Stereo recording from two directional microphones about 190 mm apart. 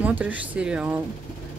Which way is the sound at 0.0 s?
10° right (ahead or behind).